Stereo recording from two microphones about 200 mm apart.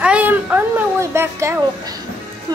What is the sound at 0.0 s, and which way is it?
A child's voice, 5° right (ahead or behind).